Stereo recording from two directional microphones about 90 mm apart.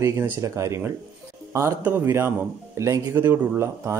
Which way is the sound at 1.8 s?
25° right (ahead or behind).